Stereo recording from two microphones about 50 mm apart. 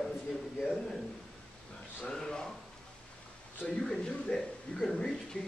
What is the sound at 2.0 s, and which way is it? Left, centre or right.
Speech, centre.